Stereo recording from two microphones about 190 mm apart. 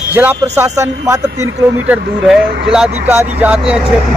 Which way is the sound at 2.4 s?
55° right (ahead or behind).